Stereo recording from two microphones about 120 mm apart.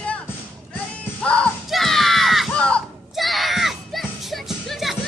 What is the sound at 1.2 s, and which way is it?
Music, 10° left (ahead or behind).